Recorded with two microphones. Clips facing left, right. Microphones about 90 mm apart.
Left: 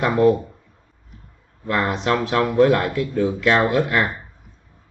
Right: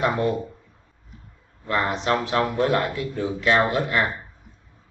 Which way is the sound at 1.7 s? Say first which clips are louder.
Left 2 dB; 60° left (ahead or behind).